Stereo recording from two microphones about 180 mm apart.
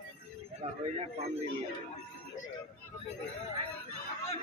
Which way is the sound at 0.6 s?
35° right (ahead or behind).